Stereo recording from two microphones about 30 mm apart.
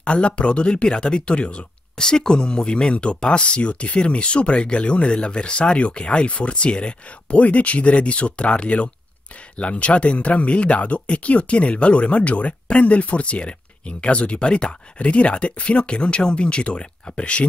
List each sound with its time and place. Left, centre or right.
0.0 s speech: left
2.0 s speech: left
2.9 s speech: left
7.4 s speech: left